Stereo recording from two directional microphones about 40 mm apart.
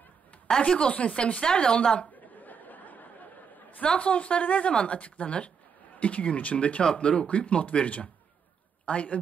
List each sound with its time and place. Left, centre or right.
0.6 s speech: left
2.4 s a sound: left
4.0 s a woman's voice: left
6.8 s a woman's voice: left